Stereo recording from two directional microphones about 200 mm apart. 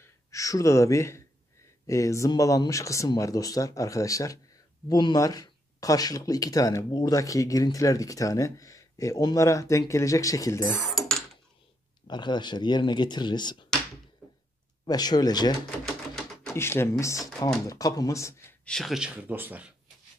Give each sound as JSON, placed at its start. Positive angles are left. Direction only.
{"t": 0.0, "sound": "speech", "side_deg": 15}
{"t": 10.9, "sound": "a sound", "side_deg": 0}
{"t": 12.1, "sound": "speech", "side_deg": 20}
{"t": 14.9, "sound": "speech", "side_deg": 20}
{"t": 16.5, "sound": "speech", "side_deg": 10}
{"t": 18.7, "sound": "speech", "side_deg": 0}